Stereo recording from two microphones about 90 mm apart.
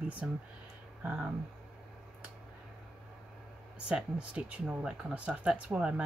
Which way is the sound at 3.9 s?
10° right (ahead or behind).